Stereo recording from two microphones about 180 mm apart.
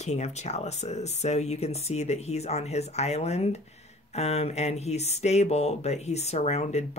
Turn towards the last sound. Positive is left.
turn(degrees=40)  # may be behind; listen again after turning